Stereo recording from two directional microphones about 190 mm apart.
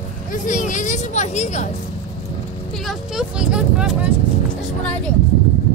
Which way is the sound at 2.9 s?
5° right (ahead or behind).